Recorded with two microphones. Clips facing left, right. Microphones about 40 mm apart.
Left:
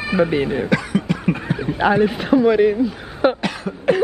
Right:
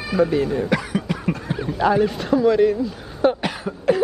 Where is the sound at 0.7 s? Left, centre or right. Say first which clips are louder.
Left 3 dB; centre.